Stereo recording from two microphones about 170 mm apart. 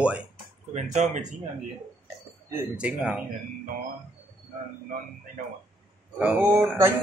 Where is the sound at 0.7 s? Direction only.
45° right (ahead or behind).